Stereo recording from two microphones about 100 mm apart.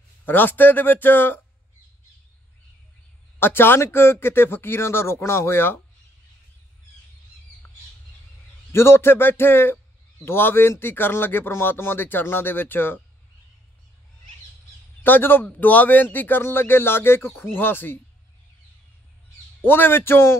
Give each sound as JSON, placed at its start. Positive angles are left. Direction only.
{"t": 0.2, "sound": "speech", "side_deg": 20}
{"t": 3.3, "sound": "speech", "side_deg": 20}
{"t": 8.7, "sound": "speech", "side_deg": 25}
{"t": 15.0, "sound": "speech", "side_deg": 20}
{"t": 19.6, "sound": "speech", "side_deg": 20}